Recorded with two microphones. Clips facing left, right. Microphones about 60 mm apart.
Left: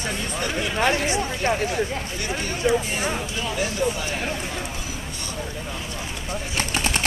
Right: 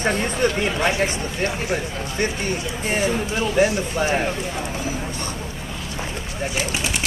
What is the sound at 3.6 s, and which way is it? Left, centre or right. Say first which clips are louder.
Speech: right 4 dB; right.